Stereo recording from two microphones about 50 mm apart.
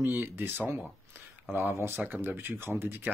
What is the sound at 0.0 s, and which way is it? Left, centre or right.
Speech, right.